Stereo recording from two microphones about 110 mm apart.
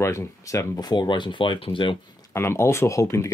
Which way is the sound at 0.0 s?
25° left (ahead or behind).